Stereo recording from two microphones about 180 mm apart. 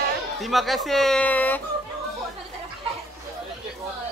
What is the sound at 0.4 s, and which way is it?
Speech, centre (ahead or behind).